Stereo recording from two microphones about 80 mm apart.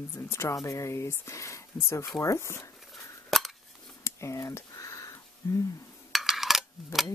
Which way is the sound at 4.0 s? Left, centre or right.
Left.